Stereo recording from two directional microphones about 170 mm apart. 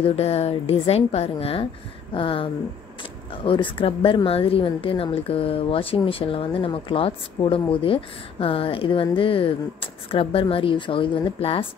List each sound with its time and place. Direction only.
0.0 s speech: 35° left (ahead or behind)